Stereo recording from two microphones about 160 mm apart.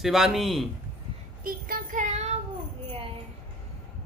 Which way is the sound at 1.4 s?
60° right (ahead or behind).